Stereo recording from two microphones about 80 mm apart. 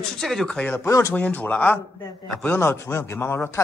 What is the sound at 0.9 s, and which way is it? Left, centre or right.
Speech, left.